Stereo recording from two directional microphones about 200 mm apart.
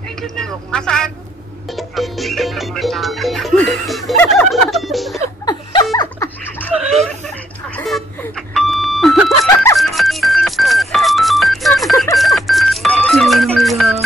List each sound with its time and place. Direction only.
0.2 s speech: 5° left (ahead or behind)
1.8 s music: centre (ahead or behind)
4.2 s a sound: 5° left (ahead or behind)
5.4 s laughter: 20° left (ahead or behind)
6.7 s a sound: 5° right (ahead or behind)
7.7 s doorbell: 5° left (ahead or behind)
9.8 s music: centre (ahead or behind)